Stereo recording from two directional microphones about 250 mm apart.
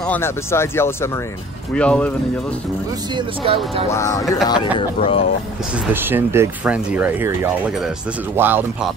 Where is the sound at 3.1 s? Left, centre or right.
Right.